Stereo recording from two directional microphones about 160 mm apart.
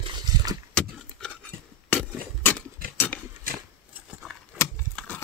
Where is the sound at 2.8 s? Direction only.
65° right (ahead or behind).